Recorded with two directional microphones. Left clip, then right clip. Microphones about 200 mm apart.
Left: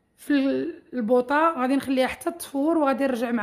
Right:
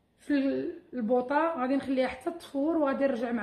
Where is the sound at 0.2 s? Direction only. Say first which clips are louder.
Left 5 dB; 50° left (ahead or behind).